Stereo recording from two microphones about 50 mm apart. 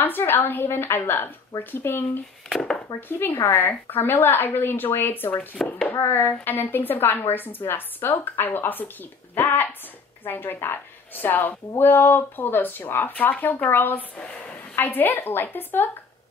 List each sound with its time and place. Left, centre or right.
0.0 s a woman's voice: left
0.7 s a woman's voice: left
5.9 s a woman's voice: left
6.4 s a woman's voice: left
14.1 s a woman's voice: left
14.8 s a woman's voice: left